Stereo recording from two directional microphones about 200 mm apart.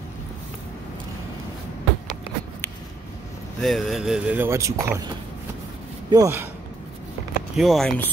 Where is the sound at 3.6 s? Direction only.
Centre (ahead or behind); by 6.4 s 15° right (ahead or behind).